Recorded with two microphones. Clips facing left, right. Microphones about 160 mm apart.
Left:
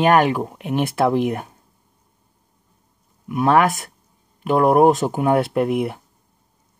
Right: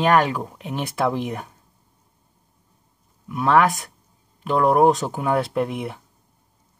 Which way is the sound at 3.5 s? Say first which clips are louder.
Left 1 dB; 60° left (ahead or behind).